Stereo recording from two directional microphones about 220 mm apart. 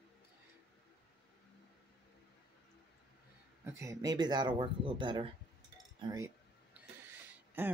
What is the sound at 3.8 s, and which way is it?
Speech, 15° right (ahead or behind).